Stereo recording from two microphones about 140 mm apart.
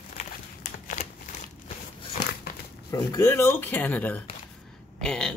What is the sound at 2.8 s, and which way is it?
Speech, 20° left (ahead or behind).